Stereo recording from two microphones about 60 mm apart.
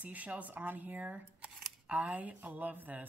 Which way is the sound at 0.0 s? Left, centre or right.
Right.